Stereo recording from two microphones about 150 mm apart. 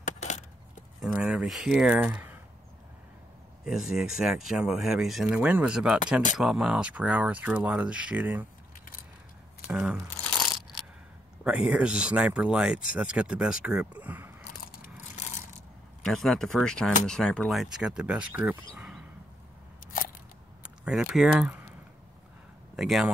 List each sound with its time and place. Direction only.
0.2 s a sound: 50° left (ahead or behind)
1.0 s speech: 5° right (ahead or behind)
3.7 s speech: centre (ahead or behind)
9.7 s speech: 5° right (ahead or behind)
11.4 s speech: 5° right (ahead or behind)
14.7 s a sound: 75° left (ahead or behind)
16.0 s speech: centre (ahead or behind)
20.8 s speech: 5° right (ahead or behind)
22.8 s speech: centre (ahead or behind)